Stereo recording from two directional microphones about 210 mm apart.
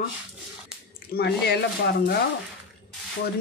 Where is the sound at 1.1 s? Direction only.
50° left (ahead or behind).